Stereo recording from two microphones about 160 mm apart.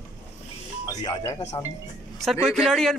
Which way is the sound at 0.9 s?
25° left (ahead or behind).